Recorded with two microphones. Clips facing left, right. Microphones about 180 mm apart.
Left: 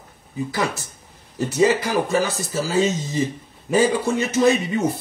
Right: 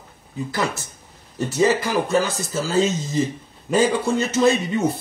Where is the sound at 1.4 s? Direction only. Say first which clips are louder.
Left 1 dB; 15° left (ahead or behind).